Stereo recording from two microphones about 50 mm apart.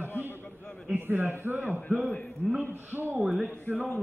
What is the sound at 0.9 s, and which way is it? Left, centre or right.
Speech, right.